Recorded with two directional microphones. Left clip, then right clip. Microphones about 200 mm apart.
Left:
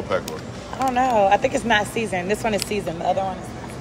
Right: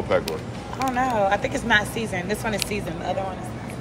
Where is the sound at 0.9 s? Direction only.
50° left (ahead or behind).